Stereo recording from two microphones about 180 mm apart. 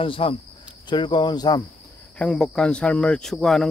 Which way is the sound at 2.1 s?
5° left (ahead or behind).